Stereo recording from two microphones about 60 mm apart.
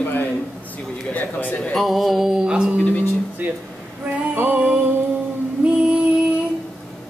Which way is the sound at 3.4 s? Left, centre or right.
Right.